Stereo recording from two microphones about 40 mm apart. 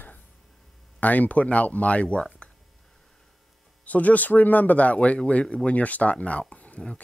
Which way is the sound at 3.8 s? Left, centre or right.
Left.